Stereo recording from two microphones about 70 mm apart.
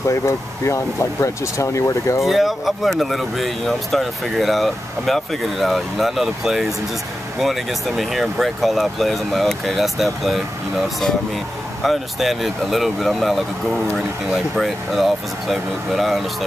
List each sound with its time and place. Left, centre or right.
0.1 s speech: left
2.2 s speech: centre